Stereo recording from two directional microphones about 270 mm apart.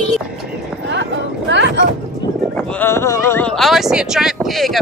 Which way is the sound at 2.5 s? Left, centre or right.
Centre.